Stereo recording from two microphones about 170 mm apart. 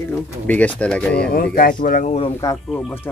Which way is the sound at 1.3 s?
60° left (ahead or behind).